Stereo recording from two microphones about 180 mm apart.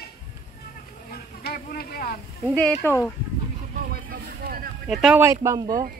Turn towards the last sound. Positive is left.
turn(degrees=-15)  # may be behind; listen again after turning